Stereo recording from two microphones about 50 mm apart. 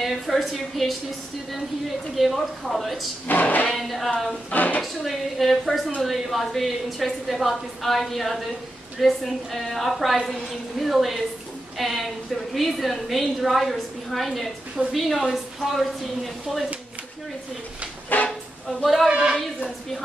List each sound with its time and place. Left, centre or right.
0.0 s a woman's voice: centre
2.1 s a woman's voice: centre
3.3 s a woman's voice: left
3.7 s a woman's voice: centre
4.5 s a woman's voice: left
4.8 s a woman's voice: centre
18.1 s a sound: left
18.7 s a woman's voice: centre
19.0 s speech: centre